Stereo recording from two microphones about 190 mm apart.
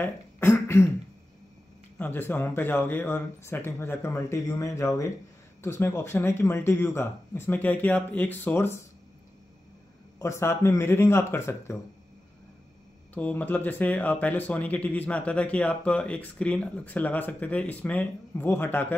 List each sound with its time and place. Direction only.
0.0 s beatboxing: 10° left (ahead or behind)
2.0 s speech: 10° left (ahead or behind)
10.1 s speech: 15° left (ahead or behind)
13.1 s speech: 10° left (ahead or behind)